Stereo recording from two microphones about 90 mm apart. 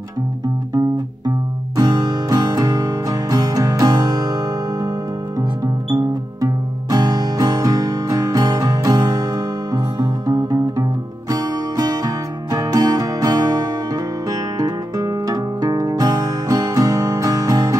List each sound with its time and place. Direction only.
1.8 s music: 45° right (ahead or behind)
6.4 s music: 45° right (ahead or behind)